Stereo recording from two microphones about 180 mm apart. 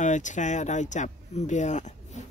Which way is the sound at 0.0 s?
40° left (ahead or behind).